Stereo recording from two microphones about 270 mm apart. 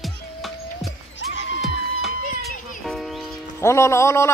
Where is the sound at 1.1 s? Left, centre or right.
Left.